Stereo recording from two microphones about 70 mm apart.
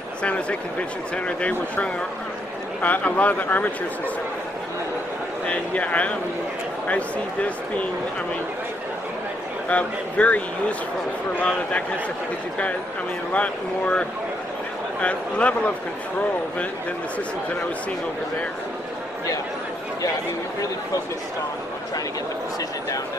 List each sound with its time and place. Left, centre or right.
0.2 s speech: centre
2.8 s speech: left
5.5 s speech: centre
9.7 s speech: left
13.3 s speech: centre